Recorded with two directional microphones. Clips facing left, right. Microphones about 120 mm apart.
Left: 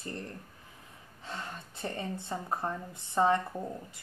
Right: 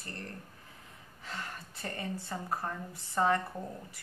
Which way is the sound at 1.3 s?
25° left (ahead or behind).